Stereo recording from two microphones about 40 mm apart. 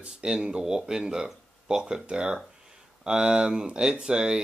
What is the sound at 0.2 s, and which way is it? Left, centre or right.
Speech, centre.